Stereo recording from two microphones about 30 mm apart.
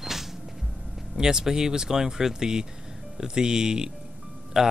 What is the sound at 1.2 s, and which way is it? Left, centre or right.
Speech, centre.